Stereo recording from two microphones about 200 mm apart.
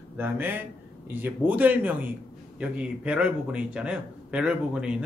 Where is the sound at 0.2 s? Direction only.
10° right (ahead or behind).